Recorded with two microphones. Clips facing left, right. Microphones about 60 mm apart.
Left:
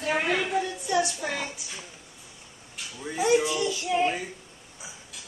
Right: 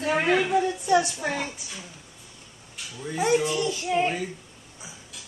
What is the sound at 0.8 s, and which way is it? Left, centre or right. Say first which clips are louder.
Speech: right 4 dB; right.